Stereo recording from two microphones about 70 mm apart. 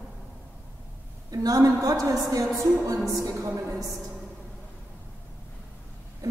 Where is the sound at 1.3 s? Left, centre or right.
Right.